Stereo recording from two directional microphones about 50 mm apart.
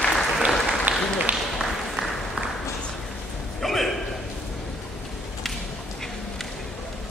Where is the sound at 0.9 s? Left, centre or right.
Right.